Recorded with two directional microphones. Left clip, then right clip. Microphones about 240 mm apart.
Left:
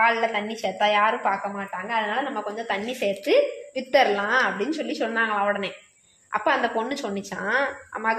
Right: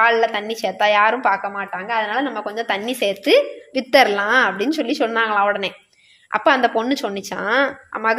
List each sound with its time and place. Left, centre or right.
0.0 s a woman's voice: right